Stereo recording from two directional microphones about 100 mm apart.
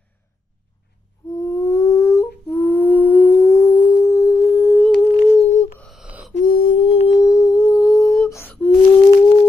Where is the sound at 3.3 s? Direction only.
30° left (ahead or behind).